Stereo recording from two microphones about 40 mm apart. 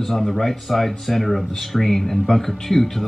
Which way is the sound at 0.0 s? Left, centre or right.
Centre.